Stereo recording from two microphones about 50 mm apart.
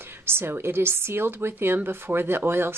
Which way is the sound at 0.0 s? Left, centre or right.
Right.